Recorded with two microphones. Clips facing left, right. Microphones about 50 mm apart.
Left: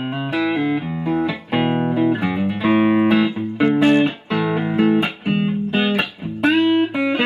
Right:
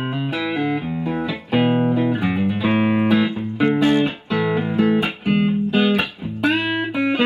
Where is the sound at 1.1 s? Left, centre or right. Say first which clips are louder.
Left 4 dB; centre.